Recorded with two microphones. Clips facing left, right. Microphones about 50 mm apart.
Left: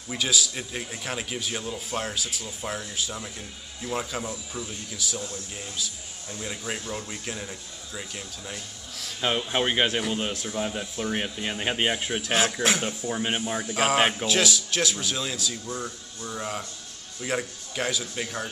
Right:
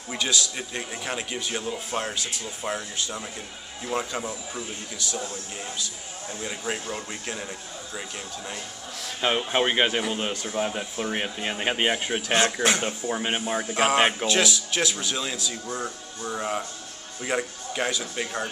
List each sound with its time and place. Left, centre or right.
0.1 s a man's voice: centre
1.5 s a man's voice: centre
4.9 s a man's voice: centre
6.4 s a man's voice: centre
15.5 s a man's voice: centre